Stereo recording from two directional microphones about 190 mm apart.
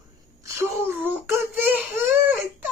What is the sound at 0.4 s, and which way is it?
Wail, 10° right (ahead or behind).